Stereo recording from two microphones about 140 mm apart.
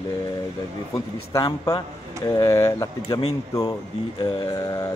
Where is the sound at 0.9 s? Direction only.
25° left (ahead or behind).